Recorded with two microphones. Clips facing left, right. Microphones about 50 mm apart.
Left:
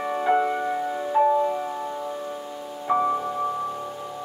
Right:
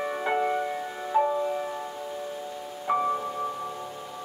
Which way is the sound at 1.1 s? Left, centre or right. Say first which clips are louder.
Left 4 dB; centre.